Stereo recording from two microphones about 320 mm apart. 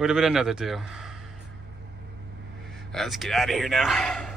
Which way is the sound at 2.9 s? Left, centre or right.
Centre.